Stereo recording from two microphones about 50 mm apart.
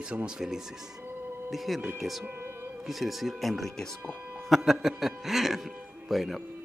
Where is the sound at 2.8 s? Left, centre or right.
Centre.